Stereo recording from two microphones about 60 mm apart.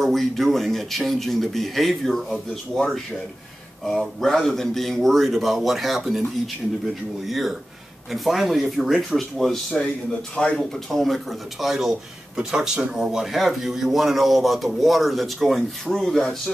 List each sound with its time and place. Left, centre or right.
0.0 s speech: centre
4.2 s speech: centre
10.3 s speech: centre
10.6 s speech: centre